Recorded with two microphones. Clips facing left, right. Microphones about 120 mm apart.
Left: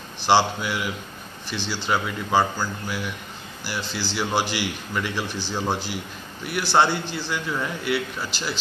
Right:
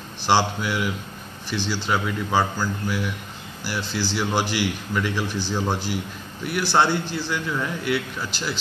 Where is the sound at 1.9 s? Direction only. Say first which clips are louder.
Left 1 dB; 5° left (ahead or behind).